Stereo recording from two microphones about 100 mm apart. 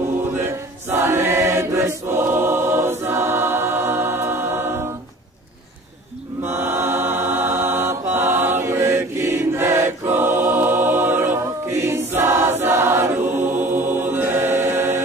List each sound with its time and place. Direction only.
0.8 s choir: 25° right (ahead or behind)
6.4 s choir: 25° right (ahead or behind)